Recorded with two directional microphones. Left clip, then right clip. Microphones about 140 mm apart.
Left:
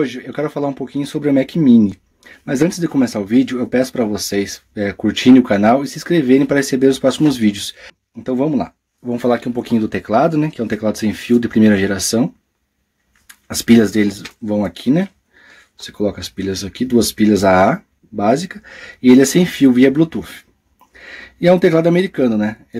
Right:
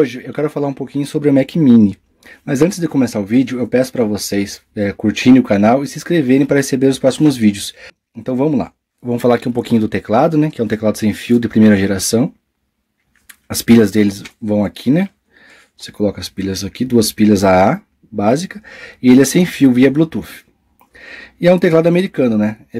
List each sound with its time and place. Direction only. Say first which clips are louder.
0.0 s speech: right 4 dB; 40° right (ahead or behind)
13.3 s speech: right 1 dB; 35° right (ahead or behind)